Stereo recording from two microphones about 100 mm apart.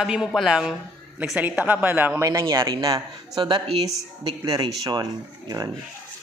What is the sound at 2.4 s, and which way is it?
Speech, 45° right (ahead or behind).